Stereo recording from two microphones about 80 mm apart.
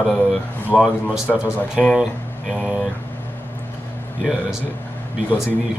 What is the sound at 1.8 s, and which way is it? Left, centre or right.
Speech, centre.